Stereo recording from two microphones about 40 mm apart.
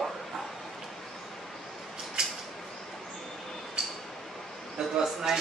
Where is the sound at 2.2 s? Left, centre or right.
Centre.